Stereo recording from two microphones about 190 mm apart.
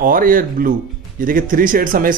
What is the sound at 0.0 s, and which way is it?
Speech, 45° right (ahead or behind).